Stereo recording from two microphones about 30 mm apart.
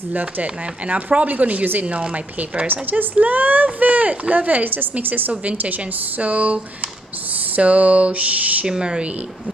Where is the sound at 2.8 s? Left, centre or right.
Right.